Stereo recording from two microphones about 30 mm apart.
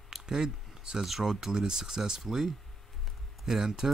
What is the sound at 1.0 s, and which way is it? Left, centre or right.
Speech, centre.